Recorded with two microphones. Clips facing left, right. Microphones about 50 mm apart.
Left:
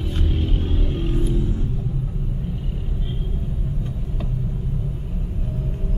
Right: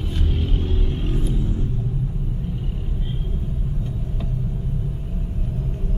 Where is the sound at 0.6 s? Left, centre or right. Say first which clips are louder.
Left 1 dB; centre.